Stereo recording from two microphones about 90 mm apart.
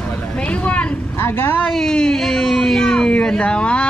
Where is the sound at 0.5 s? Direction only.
15° left (ahead or behind).